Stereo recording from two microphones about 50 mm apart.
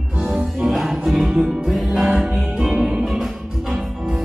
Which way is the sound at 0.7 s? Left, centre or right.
Centre.